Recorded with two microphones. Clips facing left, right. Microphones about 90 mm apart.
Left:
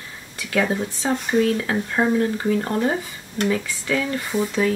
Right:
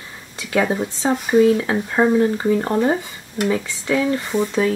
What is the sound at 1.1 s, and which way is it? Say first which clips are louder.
Speech: right 5 dB; 5° right (ahead or behind).